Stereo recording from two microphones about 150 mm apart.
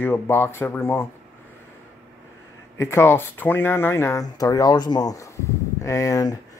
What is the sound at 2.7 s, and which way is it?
Speech, 15° left (ahead or behind).